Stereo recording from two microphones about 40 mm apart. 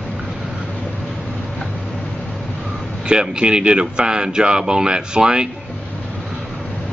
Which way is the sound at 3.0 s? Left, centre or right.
Right.